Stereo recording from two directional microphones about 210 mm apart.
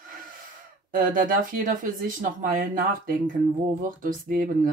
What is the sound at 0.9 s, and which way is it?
Speech, 40° right (ahead or behind).